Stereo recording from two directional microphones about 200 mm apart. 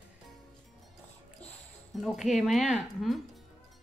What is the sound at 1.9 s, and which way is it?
Speech, centre (ahead or behind).